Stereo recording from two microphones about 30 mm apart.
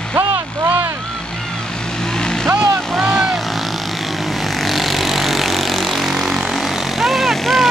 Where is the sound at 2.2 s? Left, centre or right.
Left.